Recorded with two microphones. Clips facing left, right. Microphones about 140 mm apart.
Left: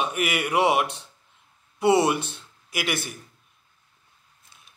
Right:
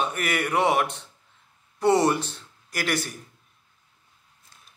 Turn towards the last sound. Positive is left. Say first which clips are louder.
# right 1 dB
turn(degrees=5)  # may be behind; listen again after turning